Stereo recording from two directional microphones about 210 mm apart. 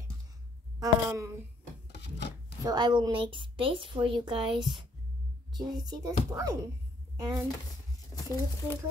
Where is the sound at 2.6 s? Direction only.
20° right (ahead or behind).